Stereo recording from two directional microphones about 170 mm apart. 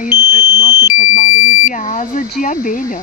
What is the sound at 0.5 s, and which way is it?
Speech, 25° left (ahead or behind).